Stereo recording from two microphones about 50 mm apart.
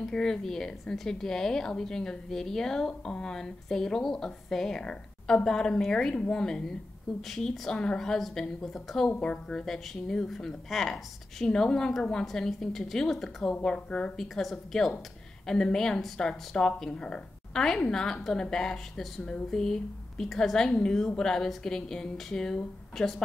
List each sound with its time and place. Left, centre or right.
0.1 s a woman's voice: centre
6.1 s a woman's voice: left
6.4 s a woman's voice: centre
14.1 s a woman's voice: centre